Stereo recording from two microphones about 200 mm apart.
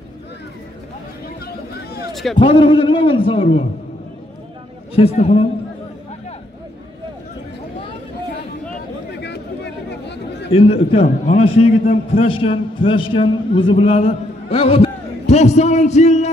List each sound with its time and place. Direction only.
2.3 s a man's voice: 25° left (ahead or behind)
4.9 s a man's voice: 30° left (ahead or behind)
9.8 s chatter: 60° left (ahead or behind)
10.5 s a man's voice: 30° left (ahead or behind)